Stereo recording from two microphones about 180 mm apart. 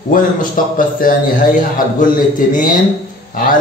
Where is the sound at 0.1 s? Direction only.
50° left (ahead or behind).